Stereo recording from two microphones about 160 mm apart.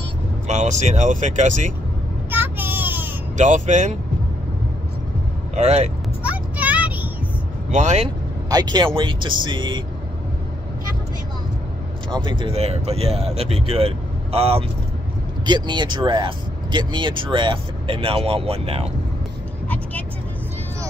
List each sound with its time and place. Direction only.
0.5 s speech: 50° right (ahead or behind)
2.3 s vehicle: 15° right (ahead or behind)
3.3 s speech: 50° right (ahead or behind)
5.6 s speech: 45° right (ahead or behind)
6.2 s vehicle: 10° right (ahead or behind)
7.7 s speech: 45° right (ahead or behind)
8.5 s speech: 25° right (ahead or behind)
12.3 s speech: 30° right (ahead or behind)